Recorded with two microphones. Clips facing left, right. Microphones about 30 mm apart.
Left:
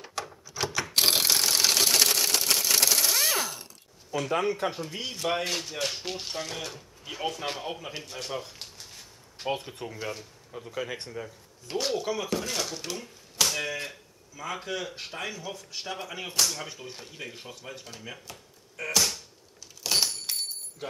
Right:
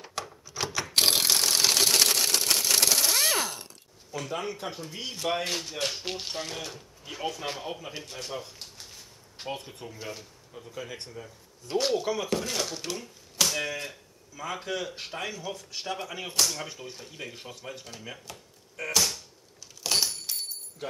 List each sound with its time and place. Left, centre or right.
0.0 s door: centre
0.5 s mechanisms: centre
0.9 s a sound: centre
4.4 s speech: centre
11.7 s speech: centre
13.0 s finger snapping: centre
14.3 s speech: centre
19.8 s a sound: centre
20.3 s a sound: left